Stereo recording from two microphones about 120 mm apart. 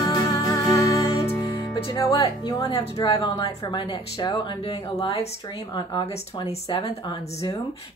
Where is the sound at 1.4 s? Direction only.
40° left (ahead or behind).